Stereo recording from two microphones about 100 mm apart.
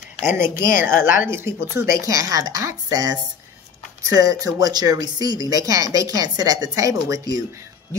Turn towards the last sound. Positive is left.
turn(degrees=-35)  # may be behind; listen again after turning